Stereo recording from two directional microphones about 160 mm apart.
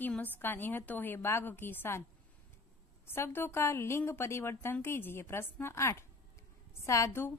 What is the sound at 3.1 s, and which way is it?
A woman's voice, 15° left (ahead or behind).